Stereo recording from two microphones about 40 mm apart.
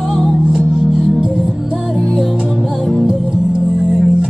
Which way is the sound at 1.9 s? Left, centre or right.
Centre.